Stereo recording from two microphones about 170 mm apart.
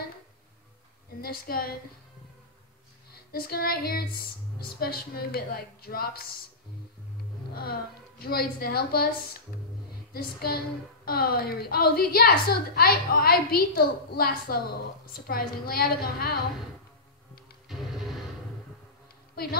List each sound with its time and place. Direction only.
1.2 s a woman's voice: 60° left (ahead or behind)
3.3 s a woman's voice: 60° left (ahead or behind)
7.5 s a woman's voice: 65° left (ahead or behind)
10.1 s a woman's voice: 60° left (ahead or behind)
17.6 s music: centre (ahead or behind)